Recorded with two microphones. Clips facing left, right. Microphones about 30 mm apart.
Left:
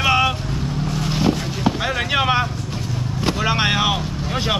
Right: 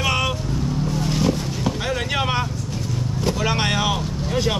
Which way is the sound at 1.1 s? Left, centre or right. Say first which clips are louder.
Left 4 dB; left.